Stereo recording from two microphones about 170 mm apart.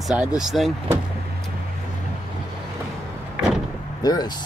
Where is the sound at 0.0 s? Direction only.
Centre (ahead or behind).